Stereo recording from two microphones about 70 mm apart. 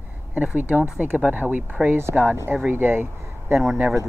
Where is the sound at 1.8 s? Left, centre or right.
Right.